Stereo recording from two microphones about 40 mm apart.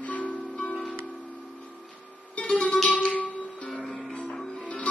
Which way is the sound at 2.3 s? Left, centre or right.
Left.